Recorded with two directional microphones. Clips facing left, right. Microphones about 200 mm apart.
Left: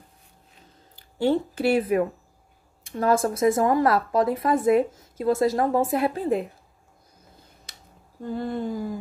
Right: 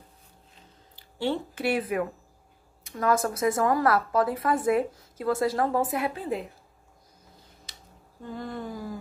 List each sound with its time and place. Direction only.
0.9 s a sound: 45° left (ahead or behind)
1.5 s speech: 30° left (ahead or behind)
6.0 s a woman's voice: 40° left (ahead or behind)
8.2 s speech: 30° left (ahead or behind)